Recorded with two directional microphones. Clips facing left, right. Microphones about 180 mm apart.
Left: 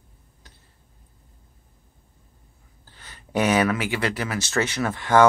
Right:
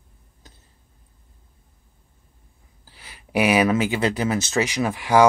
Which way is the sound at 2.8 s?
10° right (ahead or behind).